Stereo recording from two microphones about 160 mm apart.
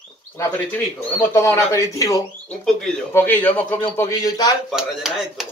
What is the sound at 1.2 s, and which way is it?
A man's voice, 15° left (ahead or behind).